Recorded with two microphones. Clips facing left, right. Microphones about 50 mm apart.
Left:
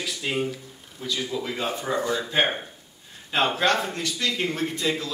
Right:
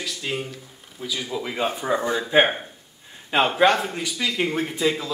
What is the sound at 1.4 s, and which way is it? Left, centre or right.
A man's voice, centre.